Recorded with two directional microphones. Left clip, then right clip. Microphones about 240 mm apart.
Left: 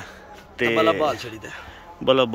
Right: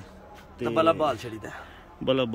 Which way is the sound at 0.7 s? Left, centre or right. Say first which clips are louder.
Left 2 dB; centre.